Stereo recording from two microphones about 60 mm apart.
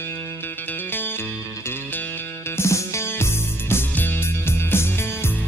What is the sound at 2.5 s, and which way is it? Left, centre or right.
Music, left.